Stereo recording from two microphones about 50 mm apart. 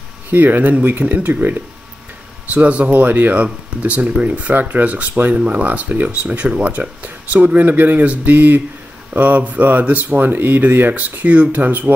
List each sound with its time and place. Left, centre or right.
0.3 s speech: right
2.5 s speech: right